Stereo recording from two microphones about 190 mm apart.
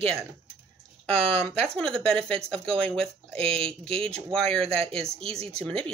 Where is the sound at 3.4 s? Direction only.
30° right (ahead or behind).